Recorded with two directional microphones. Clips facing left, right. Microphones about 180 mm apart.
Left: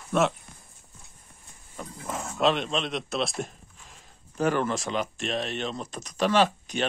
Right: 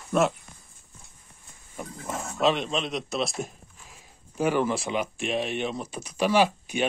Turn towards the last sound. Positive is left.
turn(degrees=-10)  # may be behind; listen again after turning